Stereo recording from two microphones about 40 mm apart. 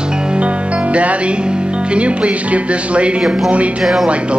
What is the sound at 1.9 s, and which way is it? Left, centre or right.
Speech, right.